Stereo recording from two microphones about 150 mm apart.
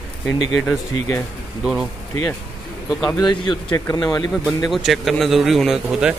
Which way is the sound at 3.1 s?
30° left (ahead or behind).